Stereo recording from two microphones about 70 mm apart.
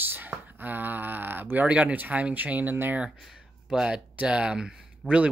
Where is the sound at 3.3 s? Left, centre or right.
Centre.